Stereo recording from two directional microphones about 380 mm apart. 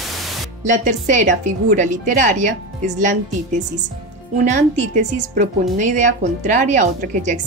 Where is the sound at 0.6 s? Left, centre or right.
Centre.